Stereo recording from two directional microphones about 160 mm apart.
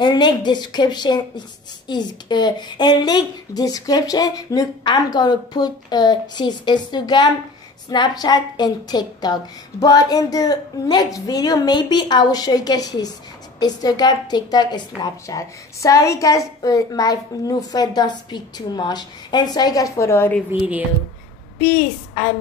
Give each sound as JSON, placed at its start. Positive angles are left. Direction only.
{"t": 0.0, "sound": "a woman's voice", "side_deg": 30}